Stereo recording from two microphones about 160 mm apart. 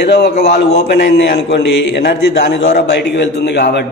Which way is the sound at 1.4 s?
90° left.